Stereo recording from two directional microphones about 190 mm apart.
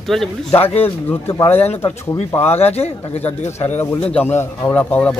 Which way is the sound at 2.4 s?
35° left (ahead or behind).